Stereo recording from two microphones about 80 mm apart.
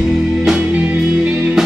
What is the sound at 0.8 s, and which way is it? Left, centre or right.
Music, centre.